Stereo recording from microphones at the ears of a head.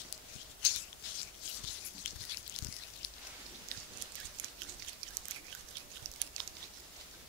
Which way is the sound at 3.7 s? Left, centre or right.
Right.